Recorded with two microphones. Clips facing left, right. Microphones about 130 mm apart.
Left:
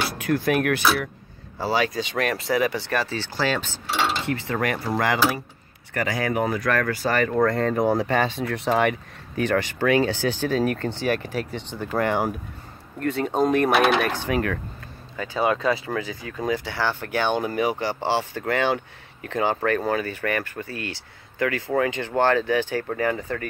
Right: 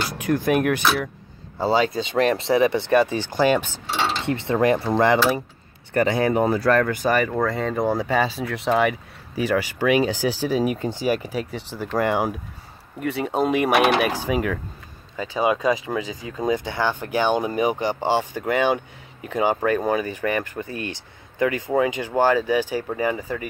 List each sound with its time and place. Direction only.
0.2 s speech: 15° right (ahead or behind)
7.3 s speech: centre (ahead or behind)